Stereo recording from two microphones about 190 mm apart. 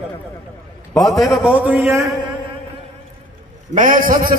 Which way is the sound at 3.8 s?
45° right (ahead or behind).